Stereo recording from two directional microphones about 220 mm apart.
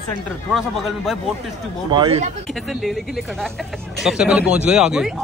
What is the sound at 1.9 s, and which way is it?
Speech, 20° right (ahead or behind).